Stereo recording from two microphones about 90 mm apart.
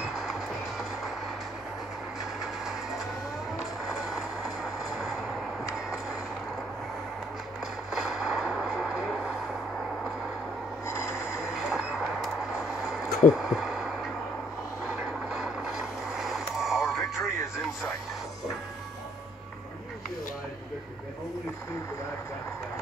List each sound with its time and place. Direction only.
0.0 s music: 5° right (ahead or behind)
3.8 s music: 5° right (ahead or behind)
4.8 s vehicle: centre (ahead or behind)
7.9 s a sound: 5° right (ahead or behind)
10.9 s a sound: 30° left (ahead or behind)
11.3 s train: 5° right (ahead or behind)
14.9 s mechanisms: 5° right (ahead or behind)